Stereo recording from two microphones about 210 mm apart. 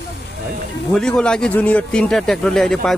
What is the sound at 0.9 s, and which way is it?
Speech, 5° left (ahead or behind).